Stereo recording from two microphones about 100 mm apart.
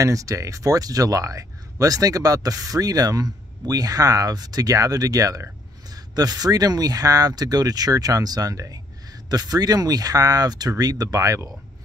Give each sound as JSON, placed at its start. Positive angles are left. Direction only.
{"t": 0.0, "sound": "speech", "side_deg": -35}